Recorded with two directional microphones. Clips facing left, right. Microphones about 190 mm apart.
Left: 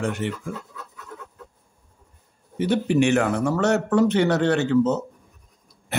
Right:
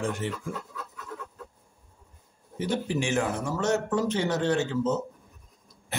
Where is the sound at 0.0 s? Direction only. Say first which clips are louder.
Left 4 dB; 65° left (ahead or behind).